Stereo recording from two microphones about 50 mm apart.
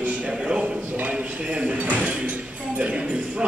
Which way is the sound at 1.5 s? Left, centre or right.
Right.